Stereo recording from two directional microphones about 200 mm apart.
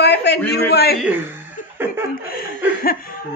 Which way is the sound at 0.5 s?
55° left (ahead or behind).